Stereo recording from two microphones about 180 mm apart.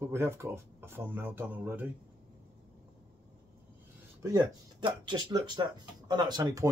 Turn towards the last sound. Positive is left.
turn(degrees=-20)  # may be behind; listen again after turning